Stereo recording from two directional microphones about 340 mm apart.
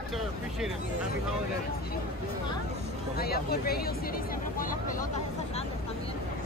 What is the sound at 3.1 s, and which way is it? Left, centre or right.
Speech, left.